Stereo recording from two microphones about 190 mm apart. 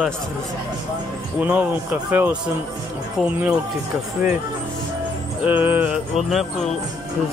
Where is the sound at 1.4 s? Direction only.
10° right (ahead or behind).